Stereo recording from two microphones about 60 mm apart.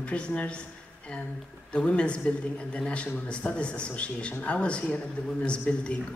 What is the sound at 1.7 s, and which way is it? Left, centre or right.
Speech, centre.